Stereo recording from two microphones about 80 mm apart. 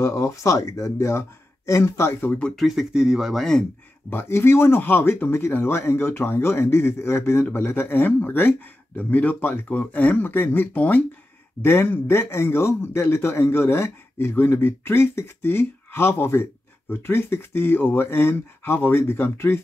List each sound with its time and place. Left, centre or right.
0.0 s speech: left
2.5 s speech: centre
4.1 s speech: left